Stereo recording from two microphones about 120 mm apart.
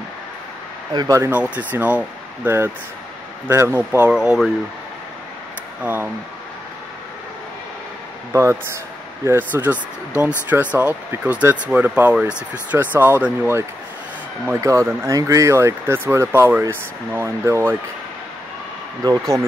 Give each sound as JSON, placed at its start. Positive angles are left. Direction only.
{"t": 0.9, "sound": "speech", "side_deg": -30}
{"t": 1.3, "sound": "speech", "side_deg": -10}
{"t": 4.1, "sound": "speech", "side_deg": -5}
{"t": 5.8, "sound": "speech", "side_deg": -15}
{"t": 8.3, "sound": "speech", "side_deg": -20}
{"t": 19.0, "sound": "speech", "side_deg": -25}